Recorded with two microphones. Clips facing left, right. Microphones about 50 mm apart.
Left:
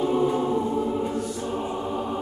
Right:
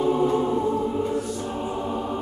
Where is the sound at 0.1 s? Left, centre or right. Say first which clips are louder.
Right 1 dB; centre.